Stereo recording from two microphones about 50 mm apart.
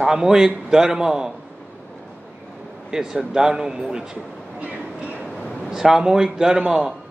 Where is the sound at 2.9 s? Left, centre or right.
Centre.